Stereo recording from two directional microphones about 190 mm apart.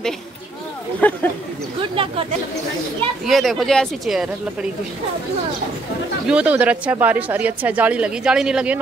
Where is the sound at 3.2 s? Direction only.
Centre (ahead or behind).